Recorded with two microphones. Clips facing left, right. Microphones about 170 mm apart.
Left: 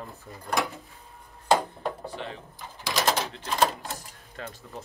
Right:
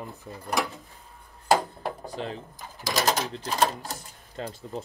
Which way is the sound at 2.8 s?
35° right (ahead or behind).